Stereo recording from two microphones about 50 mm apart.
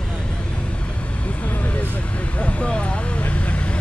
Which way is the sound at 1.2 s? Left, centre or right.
Left.